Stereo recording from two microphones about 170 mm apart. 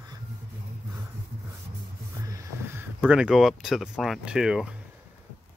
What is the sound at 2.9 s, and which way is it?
Speech, 5° right (ahead or behind).